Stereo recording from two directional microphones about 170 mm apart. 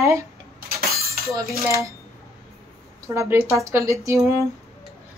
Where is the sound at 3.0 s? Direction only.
15° right (ahead or behind).